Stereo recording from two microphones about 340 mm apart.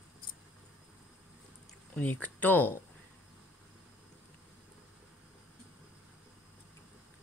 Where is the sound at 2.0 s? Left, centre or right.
Centre.